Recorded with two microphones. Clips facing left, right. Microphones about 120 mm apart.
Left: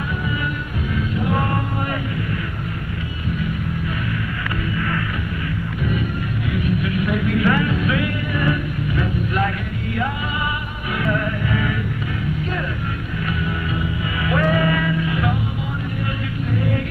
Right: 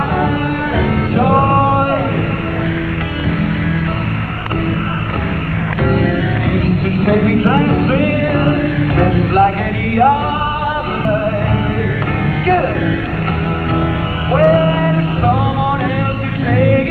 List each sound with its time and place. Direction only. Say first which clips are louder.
1.1 s music: right 11 dB; 60° right (ahead or behind)
5.9 s music: right 11 dB; 60° right (ahead or behind)
7.3 s music: right 6 dB; 45° right (ahead or behind); by 9.4 s 65° right (ahead or behind)
14.3 s music: right 9 dB; 45° right (ahead or behind)
14.9 s music: right 7 dB; 55° right (ahead or behind)
16.5 s music: right 11 dB; 65° right (ahead or behind)